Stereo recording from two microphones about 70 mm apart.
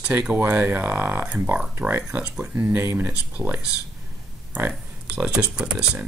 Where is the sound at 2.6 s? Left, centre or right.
Right.